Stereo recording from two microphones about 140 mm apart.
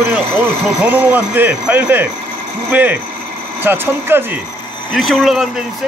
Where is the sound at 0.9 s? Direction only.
15° right (ahead or behind).